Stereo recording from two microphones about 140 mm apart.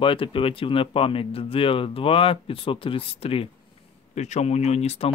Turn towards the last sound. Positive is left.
turn(degrees=50)  # may be behind; listen again after turning